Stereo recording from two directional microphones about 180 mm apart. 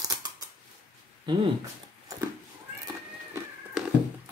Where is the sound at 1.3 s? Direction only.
25° right (ahead or behind).